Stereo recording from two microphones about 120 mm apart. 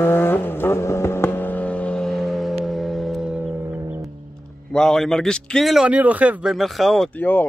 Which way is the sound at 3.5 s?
20° right (ahead or behind).